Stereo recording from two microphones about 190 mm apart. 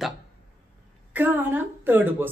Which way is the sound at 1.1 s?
10° right (ahead or behind).